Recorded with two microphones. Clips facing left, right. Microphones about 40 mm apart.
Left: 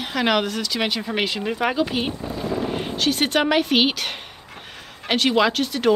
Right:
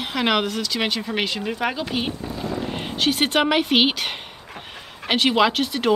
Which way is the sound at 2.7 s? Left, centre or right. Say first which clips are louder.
Even; centre.